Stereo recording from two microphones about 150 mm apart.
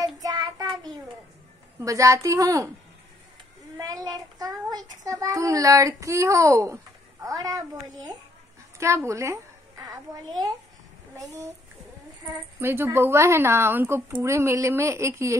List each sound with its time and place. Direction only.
0.2 s child singing: 25° right (ahead or behind)
1.8 s a woman's voice: 20° right (ahead or behind)
3.7 s child singing: 25° right (ahead or behind)
7.2 s a woman's voice: 25° right (ahead or behind)
12.5 s a woman's voice: 15° right (ahead or behind)